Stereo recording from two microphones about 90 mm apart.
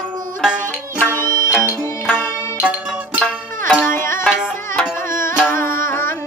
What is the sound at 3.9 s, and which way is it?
Music, 30° left (ahead or behind).